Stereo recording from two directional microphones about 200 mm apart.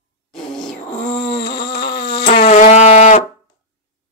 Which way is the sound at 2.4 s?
35° left (ahead or behind).